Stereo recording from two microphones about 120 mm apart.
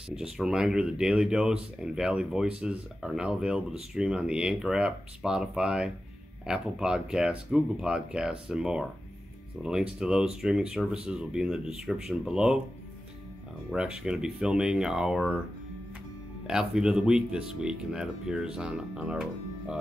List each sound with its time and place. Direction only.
0.1 s speech: 5° right (ahead or behind)
13.7 s speech: 5° right (ahead or behind)
16.4 s speech: 5° right (ahead or behind)